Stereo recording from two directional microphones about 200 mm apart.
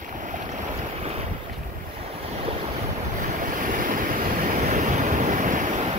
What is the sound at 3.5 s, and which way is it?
Waves, 40° right (ahead or behind).